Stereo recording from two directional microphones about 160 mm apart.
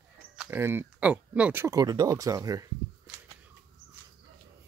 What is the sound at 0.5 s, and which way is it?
Speech, 15° right (ahead or behind).